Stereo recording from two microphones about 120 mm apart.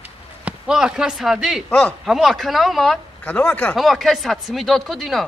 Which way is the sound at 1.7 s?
10° left (ahead or behind).